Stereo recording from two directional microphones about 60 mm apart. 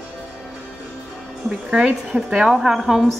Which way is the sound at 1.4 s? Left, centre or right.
Centre.